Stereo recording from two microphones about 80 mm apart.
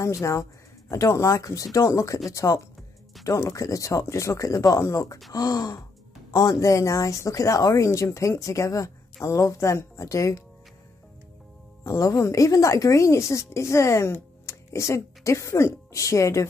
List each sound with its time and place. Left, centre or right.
0.0 s speech: left
11.8 s a woman's voice: left